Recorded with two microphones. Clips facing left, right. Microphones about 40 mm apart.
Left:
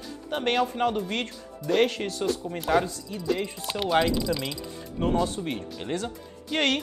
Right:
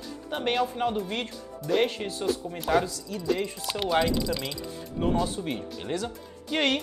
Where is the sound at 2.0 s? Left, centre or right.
Left.